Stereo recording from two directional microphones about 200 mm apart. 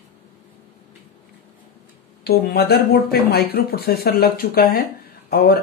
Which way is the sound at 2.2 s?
50° left (ahead or behind).